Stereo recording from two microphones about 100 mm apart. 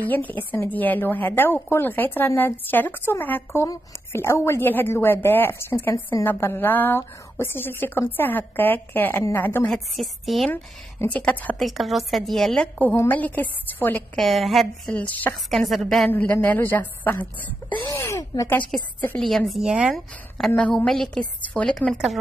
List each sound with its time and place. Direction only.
0.0 s a woman's voice: 15° left (ahead or behind)
9.7 s a woman's voice: centre (ahead or behind)
10.5 s a woman's voice: 20° left (ahead or behind)
11.2 s a woman's voice: 5° left (ahead or behind)
12.9 s a woman's voice: 20° left (ahead or behind)
14.1 s a woman's voice: centre (ahead or behind)
14.9 s a woman's voice: 15° left (ahead or behind)
15.5 s a woman's voice: centre (ahead or behind)
16.1 s a woman's voice: 15° left (ahead or behind)
17.8 s speech: 30° left (ahead or behind)
18.7 s a woman's voice: 10° left (ahead or behind); by 20.0 s 10° right (ahead or behind)
20.3 s a woman's voice: 5° left (ahead or behind)